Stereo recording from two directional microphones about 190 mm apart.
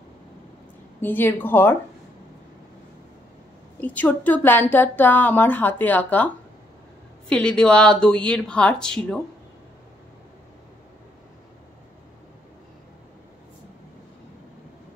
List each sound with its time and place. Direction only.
1.0 s speech: 10° left (ahead or behind)
3.8 s speech: 10° left (ahead or behind)